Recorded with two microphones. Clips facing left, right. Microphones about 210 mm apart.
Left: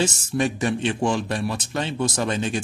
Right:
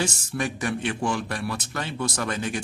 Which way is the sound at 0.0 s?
25° left (ahead or behind).